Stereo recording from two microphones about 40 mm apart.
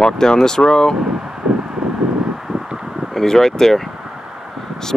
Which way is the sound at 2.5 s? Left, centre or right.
Centre.